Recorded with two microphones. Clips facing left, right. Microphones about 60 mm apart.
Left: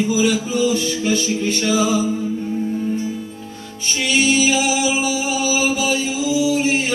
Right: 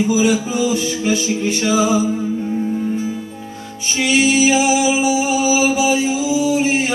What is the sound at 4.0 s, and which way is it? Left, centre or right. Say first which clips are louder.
Music: right 3 dB; centre.